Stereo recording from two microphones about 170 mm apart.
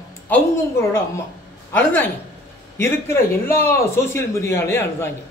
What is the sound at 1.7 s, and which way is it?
A man's voice, 10° left (ahead or behind).